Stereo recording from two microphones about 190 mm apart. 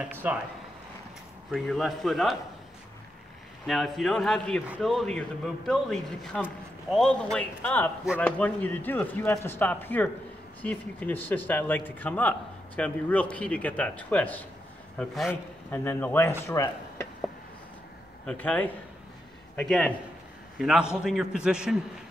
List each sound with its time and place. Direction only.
0.0 s speech: 10° right (ahead or behind)
1.5 s a man's voice: centre (ahead or behind)
3.6 s a man's voice: centre (ahead or behind)
15.7 s a man's voice: 15° left (ahead or behind)
18.2 s a man's voice: 10° left (ahead or behind)